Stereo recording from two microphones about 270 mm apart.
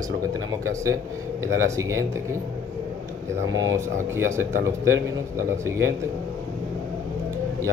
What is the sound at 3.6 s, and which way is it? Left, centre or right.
Speech, centre.